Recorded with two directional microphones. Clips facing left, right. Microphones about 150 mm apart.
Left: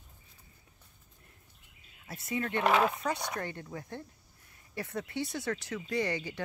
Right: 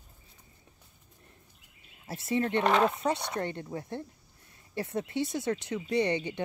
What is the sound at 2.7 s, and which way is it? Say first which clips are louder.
Speech: even; 5° left (ahead or behind).